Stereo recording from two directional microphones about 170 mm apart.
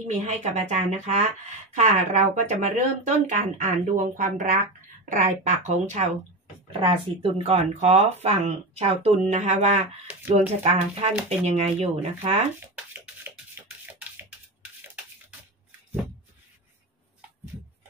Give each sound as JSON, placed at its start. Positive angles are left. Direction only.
{"t": 0.0, "sound": "speech", "side_deg": -40}
{"t": 6.7, "sound": "speech", "side_deg": -30}
{"t": 10.0, "sound": "speech", "side_deg": -10}
{"t": 10.6, "sound": "speech", "side_deg": -40}
{"t": 12.7, "sound": "a sound", "side_deg": -10}